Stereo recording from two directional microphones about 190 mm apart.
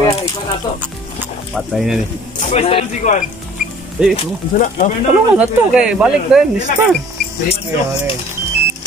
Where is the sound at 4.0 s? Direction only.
5° right (ahead or behind).